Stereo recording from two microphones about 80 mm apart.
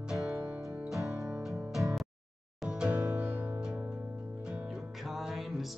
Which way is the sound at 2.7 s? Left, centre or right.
Centre.